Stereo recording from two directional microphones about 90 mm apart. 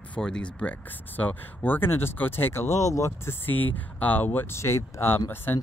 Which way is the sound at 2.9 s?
35° left (ahead or behind).